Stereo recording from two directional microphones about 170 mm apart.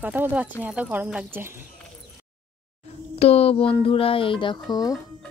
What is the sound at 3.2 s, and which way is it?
Speech, 35° left (ahead or behind).